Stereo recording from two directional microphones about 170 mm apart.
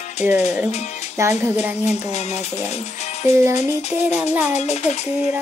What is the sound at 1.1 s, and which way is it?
Child singing, 15° right (ahead or behind).